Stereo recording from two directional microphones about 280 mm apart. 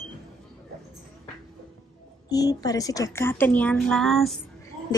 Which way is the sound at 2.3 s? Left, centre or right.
Centre.